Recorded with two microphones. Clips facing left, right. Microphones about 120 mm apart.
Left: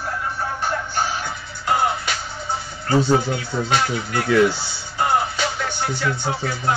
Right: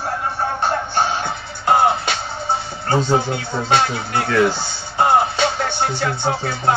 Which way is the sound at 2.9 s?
25° right (ahead or behind).